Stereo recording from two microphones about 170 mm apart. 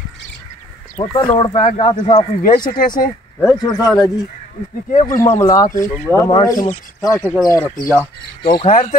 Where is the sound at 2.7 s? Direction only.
55° left (ahead or behind).